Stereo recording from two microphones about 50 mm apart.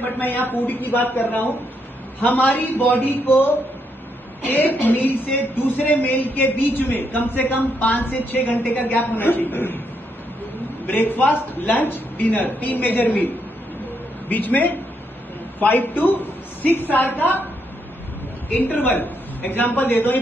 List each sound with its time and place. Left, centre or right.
0.2 s a woman's voice: left
10.9 s a woman's voice: left
14.3 s a woman's voice: left
18.5 s a woman's voice: left